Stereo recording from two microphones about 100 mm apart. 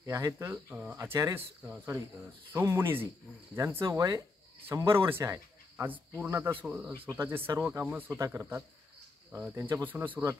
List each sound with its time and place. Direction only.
0.0 s speech: 30° right (ahead or behind)
0.7 s speech: 15° right (ahead or behind)
5.9 s speech: 20° right (ahead or behind)
8.2 s speech: 25° right (ahead or behind)